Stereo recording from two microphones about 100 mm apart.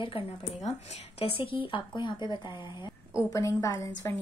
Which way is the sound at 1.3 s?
60° left (ahead or behind).